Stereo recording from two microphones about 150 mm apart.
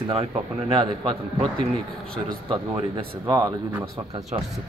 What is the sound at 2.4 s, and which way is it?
Speech, 35° right (ahead or behind).